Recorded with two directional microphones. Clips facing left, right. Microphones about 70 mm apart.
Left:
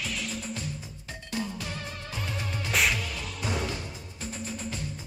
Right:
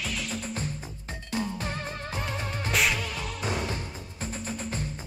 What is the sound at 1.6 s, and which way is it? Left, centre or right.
Music, right.